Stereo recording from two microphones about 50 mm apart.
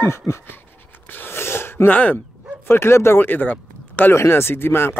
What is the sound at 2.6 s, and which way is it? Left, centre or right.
Speech, left.